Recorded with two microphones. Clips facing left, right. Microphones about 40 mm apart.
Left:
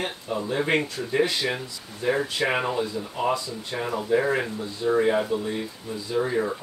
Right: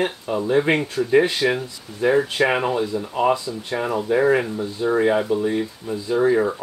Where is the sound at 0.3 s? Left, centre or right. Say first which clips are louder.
Right 5 dB; right.